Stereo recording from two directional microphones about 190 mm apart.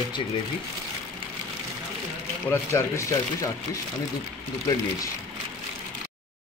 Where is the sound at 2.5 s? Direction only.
15° left (ahead or behind).